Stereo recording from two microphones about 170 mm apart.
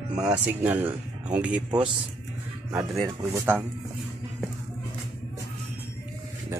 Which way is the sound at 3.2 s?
15° right (ahead or behind).